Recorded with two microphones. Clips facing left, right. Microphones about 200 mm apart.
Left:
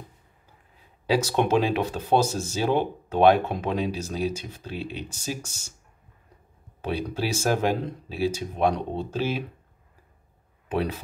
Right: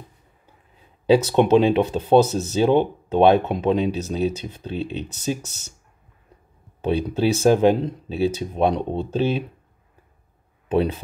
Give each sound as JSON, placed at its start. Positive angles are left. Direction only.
{"t": 1.0, "sound": "speech", "side_deg": -25}
{"t": 6.9, "sound": "speech", "side_deg": -25}